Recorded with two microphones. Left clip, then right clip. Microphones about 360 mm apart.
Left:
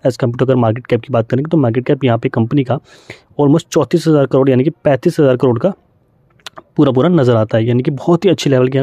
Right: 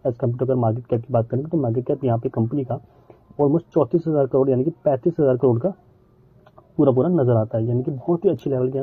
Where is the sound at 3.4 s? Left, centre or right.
Left.